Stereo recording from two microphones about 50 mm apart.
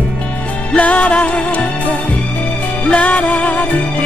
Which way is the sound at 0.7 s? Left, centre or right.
Left.